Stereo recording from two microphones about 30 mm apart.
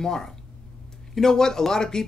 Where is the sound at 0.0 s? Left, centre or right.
Centre.